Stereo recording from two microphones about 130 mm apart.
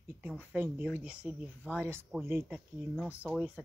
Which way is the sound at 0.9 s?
10° right (ahead or behind).